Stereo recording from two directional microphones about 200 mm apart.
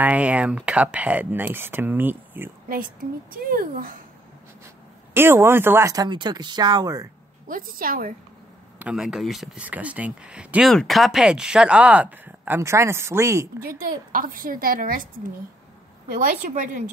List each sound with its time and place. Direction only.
0.0 s speech: 5° right (ahead or behind)
3.3 s a woman's voice: 45° right (ahead or behind)
5.1 s speech: 10° right (ahead or behind)
7.4 s a woman's voice: 45° right (ahead or behind)
8.7 s speech: 5° right (ahead or behind)
13.7 s a woman's voice: 45° right (ahead or behind)
16.1 s a woman's voice: 40° right (ahead or behind)